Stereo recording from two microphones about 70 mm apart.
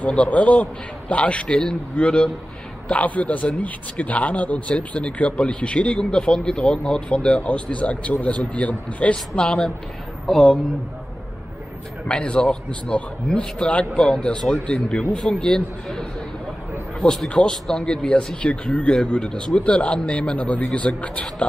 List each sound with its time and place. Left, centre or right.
0.0 s speech: centre
9.1 s speech: centre
12.1 s speech: centre
17.3 s speech: centre